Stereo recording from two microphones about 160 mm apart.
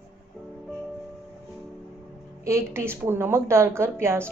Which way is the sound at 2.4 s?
15° right (ahead or behind).